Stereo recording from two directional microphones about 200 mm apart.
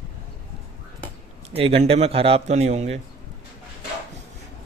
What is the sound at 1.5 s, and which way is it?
Speech, 30° right (ahead or behind).